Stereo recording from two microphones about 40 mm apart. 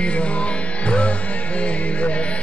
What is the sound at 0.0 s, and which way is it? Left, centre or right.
Music, left.